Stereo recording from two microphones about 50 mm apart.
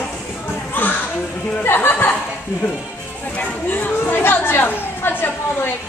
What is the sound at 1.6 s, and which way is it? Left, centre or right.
Speech, left.